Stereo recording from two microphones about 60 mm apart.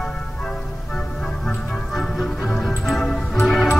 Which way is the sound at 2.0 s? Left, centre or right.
Centre.